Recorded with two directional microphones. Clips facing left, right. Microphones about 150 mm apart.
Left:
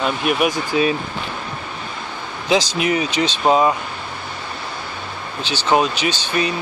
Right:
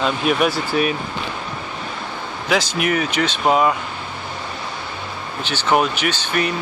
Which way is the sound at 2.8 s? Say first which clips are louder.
Left 1 dB; 20° left (ahead or behind).